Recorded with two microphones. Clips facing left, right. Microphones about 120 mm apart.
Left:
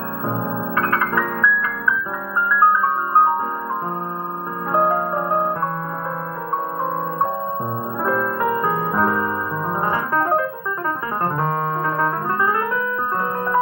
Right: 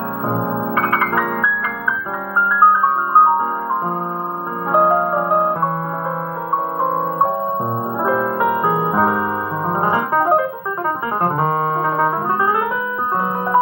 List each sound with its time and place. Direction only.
0.3 s music: 15° right (ahead or behind)
4.7 s music: 15° right (ahead or behind)
6.8 s music: 15° right (ahead or behind)
11.2 s piano: 15° right (ahead or behind)